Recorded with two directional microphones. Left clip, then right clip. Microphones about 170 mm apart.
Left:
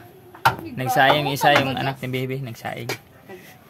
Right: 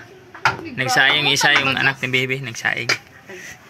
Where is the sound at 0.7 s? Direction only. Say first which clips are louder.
Right 3 dB; 50° left (ahead or behind).